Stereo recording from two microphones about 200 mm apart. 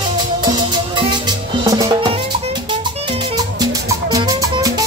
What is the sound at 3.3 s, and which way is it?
Music, 20° right (ahead or behind).